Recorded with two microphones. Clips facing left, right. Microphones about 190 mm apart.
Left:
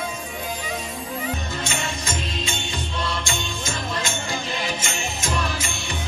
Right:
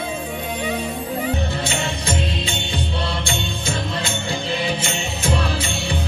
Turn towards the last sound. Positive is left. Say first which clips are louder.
# right 4 dB
turn(degrees=-30)  # may be behind; listen again after turning